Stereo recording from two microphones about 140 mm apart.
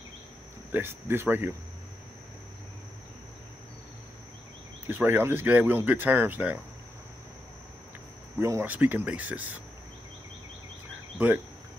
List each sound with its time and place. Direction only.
0.7 s speech: 15° right (ahead or behind)
4.8 s speech: 15° right (ahead or behind)
8.4 s speech: 20° right (ahead or behind)
11.1 s speech: 10° right (ahead or behind)